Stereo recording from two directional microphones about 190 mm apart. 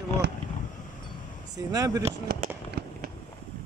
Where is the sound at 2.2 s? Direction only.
55° right (ahead or behind).